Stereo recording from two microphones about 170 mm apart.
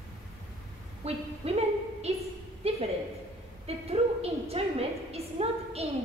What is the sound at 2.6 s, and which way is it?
Music, 35° right (ahead or behind).